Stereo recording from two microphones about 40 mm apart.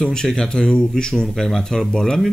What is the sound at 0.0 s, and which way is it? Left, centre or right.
Speech, centre.